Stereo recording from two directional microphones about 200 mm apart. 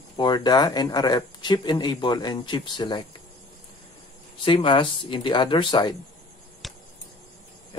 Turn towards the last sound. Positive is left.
turn(degrees=0)  # may be behind; listen again after turning